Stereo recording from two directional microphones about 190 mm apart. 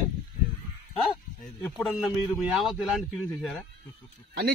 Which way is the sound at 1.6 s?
Centre (ahead or behind).